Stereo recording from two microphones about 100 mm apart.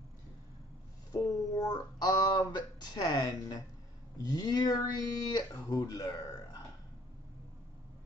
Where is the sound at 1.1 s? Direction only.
35° left (ahead or behind).